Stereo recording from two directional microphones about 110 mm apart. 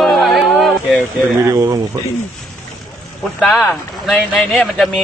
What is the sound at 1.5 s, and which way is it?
Speech, 30° right (ahead or behind).